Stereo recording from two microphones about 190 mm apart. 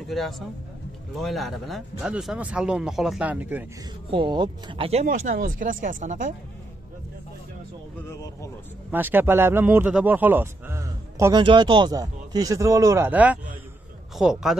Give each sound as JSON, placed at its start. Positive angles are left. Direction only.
{"t": 0.0, "sound": "speech", "side_deg": 0}
{"t": 4.1, "sound": "speech", "side_deg": -25}
{"t": 5.0, "sound": "speech", "side_deg": -45}
{"t": 8.1, "sound": "speech", "side_deg": 15}
{"t": 8.9, "sound": "a man's voice", "side_deg": -10}